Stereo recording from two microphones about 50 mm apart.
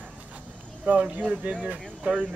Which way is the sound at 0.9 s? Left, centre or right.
Right.